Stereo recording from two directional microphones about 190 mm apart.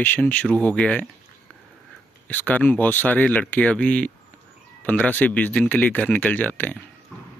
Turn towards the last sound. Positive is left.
turn(degrees=10)  # may be behind; listen again after turning